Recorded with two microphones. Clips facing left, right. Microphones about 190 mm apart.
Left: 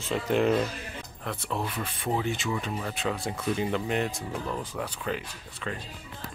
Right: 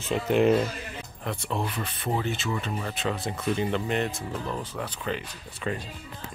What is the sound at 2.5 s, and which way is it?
Speech, 5° left (ahead or behind).